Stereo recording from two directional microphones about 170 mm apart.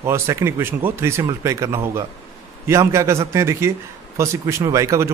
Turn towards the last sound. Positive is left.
turn(degrees=-15)  # may be behind; listen again after turning